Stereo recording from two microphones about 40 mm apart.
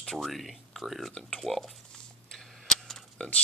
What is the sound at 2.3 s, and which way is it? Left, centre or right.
Tick, centre.